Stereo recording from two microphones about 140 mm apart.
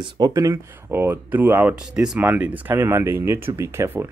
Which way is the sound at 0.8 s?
15° right (ahead or behind).